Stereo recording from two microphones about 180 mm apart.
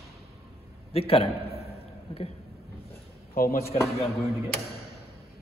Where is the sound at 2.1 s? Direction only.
35° left (ahead or behind).